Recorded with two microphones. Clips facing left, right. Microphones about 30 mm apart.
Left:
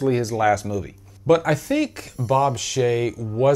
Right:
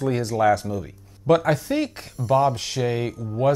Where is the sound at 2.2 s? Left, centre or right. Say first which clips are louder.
Left 1 dB; centre.